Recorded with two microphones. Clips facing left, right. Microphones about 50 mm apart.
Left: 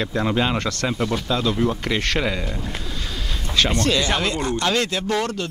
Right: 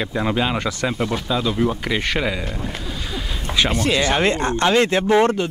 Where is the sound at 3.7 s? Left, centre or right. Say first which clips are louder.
Right 1 dB; centre.